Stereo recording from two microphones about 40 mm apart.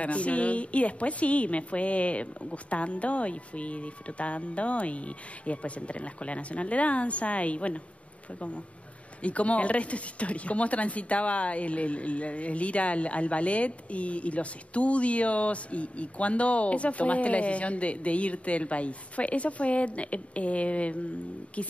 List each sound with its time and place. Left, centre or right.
0.0 s speech: left
9.2 s speech: left